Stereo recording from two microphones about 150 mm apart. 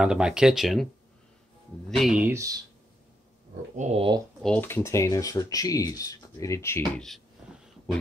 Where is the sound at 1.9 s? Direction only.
Centre (ahead or behind).